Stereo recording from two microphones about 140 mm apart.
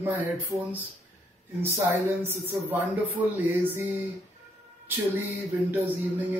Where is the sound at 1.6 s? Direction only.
20° right (ahead or behind).